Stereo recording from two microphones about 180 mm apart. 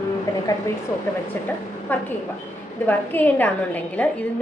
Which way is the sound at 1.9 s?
10° left (ahead or behind).